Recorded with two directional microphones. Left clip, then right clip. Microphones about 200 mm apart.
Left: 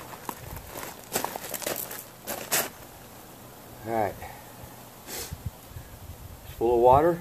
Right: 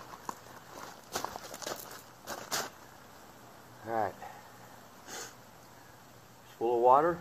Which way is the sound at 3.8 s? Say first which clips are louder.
Left 5 dB; 25° left (ahead or behind).